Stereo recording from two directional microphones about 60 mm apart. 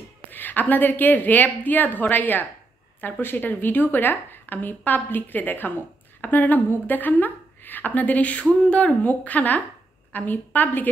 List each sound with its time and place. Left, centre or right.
0.3 s a woman's voice: left